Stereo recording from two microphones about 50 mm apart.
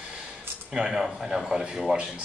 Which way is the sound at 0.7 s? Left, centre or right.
Centre.